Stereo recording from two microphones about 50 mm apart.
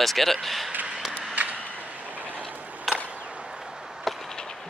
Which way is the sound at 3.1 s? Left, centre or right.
Right.